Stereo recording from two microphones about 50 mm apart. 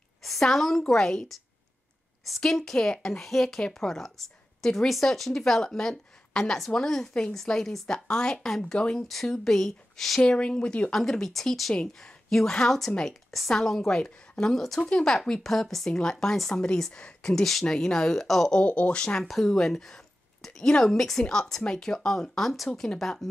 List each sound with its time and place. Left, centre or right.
0.2 s a woman's voice: centre
2.4 s speech: centre
10.2 s speech: centre
10.9 s speech: centre
11.7 s speech: centre
14.9 s speech: centre
18.6 s speech: left
19.2 s speech: centre
22.9 s speech: centre